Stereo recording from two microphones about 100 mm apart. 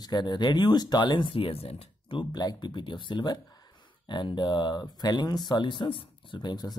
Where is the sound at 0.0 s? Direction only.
45° left (ahead or behind); by 2.1 s 80° left.